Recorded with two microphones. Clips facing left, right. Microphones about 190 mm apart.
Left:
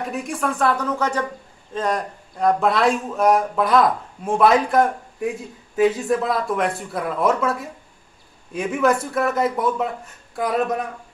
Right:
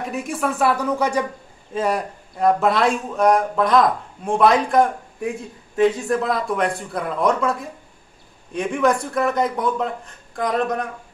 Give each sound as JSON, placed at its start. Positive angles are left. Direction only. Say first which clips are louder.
{"t": 0.0, "sound": "a man's voice", "louder": "right 1 dB", "side_deg": 0}